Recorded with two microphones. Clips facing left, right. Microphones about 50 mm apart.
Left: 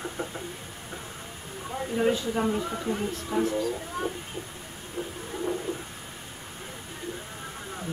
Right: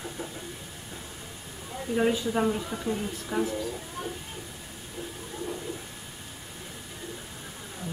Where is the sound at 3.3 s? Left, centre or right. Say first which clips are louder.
Left 2 dB; centre.